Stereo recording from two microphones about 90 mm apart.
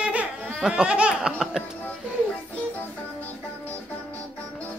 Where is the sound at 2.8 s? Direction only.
20° left (ahead or behind).